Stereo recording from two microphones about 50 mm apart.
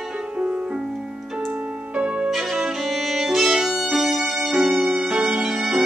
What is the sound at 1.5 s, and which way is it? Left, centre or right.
Music, right.